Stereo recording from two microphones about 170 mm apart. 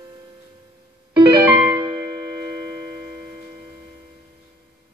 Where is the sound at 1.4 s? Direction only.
20° right (ahead or behind).